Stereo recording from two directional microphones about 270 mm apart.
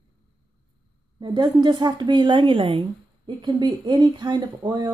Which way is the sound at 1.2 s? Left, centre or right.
Centre.